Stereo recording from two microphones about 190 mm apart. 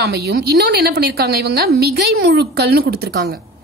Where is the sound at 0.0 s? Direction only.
60° right (ahead or behind).